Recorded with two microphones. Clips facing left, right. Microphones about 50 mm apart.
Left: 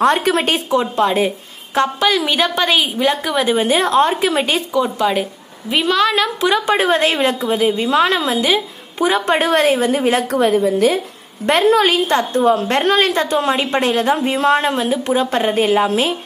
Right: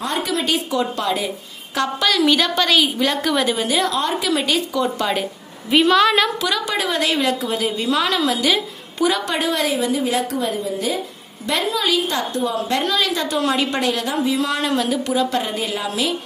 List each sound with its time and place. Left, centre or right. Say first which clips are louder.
0.0 s a woman's voice: left 8 dB; left
0.7 s a woman's voice: left 5 dB; left; by 3.4 s centre
3.4 s a woman's voice: left 4 dB; left
4.7 s a woman's voice: left 4 dB; centre
6.4 s a woman's voice: left 6 dB; left